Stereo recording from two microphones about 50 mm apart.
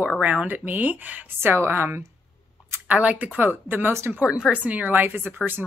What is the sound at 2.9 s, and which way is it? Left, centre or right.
Speech, right.